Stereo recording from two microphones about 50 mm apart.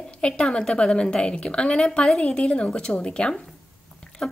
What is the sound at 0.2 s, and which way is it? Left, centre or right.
A woman's voice, centre.